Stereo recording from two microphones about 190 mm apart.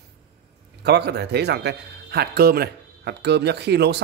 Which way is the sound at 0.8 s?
60° right (ahead or behind).